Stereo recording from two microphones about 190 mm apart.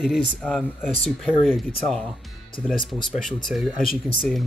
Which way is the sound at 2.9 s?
Centre (ahead or behind).